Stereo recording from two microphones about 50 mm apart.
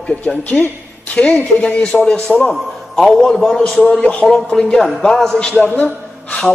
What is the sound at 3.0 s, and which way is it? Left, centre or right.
Speech, centre.